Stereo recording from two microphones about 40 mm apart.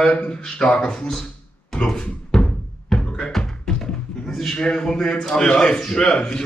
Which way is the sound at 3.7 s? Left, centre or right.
Centre.